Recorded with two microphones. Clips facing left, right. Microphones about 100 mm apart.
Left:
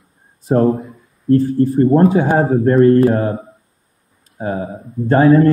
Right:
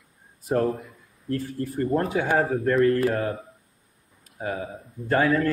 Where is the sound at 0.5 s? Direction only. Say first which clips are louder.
Left 9 dB; 30° left (ahead or behind).